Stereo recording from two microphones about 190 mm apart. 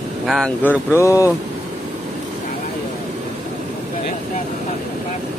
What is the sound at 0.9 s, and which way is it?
Speech, 15° left (ahead or behind).